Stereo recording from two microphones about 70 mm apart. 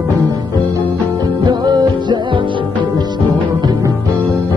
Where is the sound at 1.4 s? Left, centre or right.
Right.